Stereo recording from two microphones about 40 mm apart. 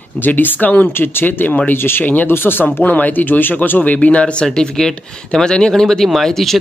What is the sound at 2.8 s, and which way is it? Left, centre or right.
Speech, left.